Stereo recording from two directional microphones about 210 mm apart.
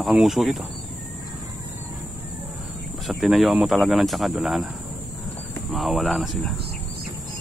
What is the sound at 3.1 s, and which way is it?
Speech, centre (ahead or behind).